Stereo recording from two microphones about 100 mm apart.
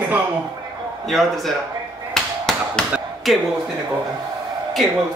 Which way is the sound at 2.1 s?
5° left (ahead or behind).